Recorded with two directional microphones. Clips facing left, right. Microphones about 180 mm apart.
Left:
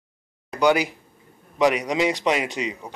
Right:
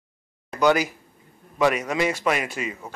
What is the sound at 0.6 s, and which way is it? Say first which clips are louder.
A child's voice: even; 15° left (ahead or behind).